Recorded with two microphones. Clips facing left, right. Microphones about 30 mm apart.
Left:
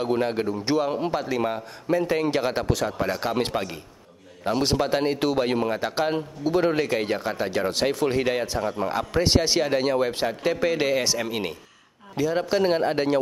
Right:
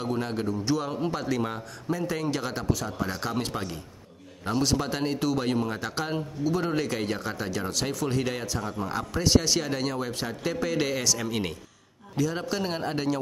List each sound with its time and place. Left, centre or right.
0.0 s a man's voice: left
1.9 s speech: left
2.6 s speech: left
3.1 s a man's voice: left